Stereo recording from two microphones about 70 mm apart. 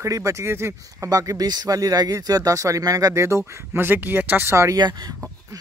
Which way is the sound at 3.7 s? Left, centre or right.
Right.